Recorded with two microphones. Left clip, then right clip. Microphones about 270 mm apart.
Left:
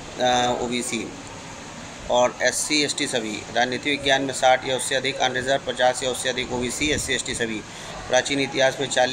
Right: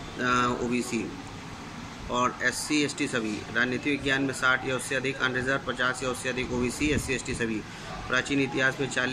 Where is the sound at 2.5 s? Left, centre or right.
Centre.